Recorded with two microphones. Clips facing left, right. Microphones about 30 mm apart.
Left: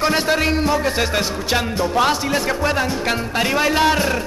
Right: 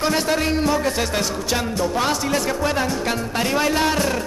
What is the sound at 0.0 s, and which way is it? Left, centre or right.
Music, left.